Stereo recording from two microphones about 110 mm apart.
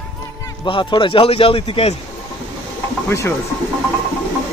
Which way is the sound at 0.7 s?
50° left (ahead or behind).